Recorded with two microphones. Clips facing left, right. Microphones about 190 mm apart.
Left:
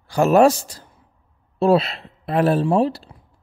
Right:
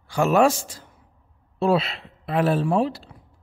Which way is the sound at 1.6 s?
35° left (ahead or behind).